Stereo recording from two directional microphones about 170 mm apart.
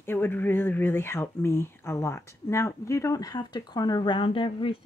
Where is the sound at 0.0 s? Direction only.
15° left (ahead or behind).